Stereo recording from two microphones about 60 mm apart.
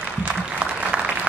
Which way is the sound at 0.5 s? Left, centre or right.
Centre.